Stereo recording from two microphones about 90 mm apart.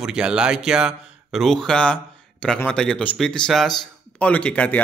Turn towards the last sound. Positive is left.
turn(degrees=15)  # may be behind; listen again after turning